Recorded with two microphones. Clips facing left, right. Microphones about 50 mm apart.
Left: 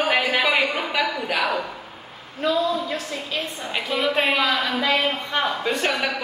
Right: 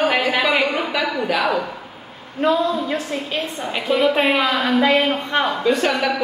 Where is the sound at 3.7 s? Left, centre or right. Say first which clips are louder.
Right 5 dB; centre.